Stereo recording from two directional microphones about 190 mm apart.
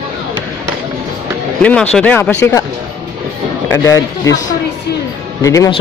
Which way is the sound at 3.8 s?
15° left (ahead or behind).